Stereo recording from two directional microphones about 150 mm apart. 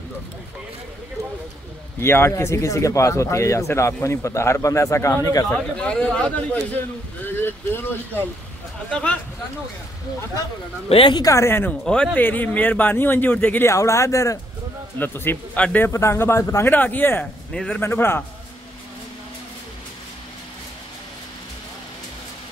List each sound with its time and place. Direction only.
2.0 s speech: 15° left (ahead or behind)
5.5 s a man's voice: 5° left (ahead or behind)
10.9 s a man's voice: 35° left (ahead or behind); by 17.8 s 5° left (ahead or behind)
17.8 s a man's voice: 15° left (ahead or behind)